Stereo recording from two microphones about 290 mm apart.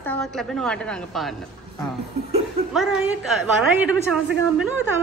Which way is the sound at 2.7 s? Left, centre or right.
Centre.